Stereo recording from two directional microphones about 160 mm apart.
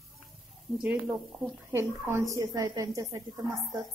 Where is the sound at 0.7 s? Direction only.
5° right (ahead or behind).